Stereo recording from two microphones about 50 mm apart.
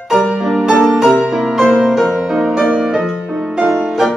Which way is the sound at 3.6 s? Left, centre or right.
Right.